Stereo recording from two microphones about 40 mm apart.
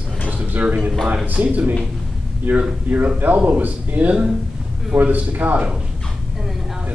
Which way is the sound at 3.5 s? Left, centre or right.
Right.